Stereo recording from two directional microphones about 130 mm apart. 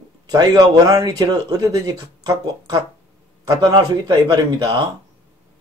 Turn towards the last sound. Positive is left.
turn(degrees=-35)  # may be behind; listen again after turning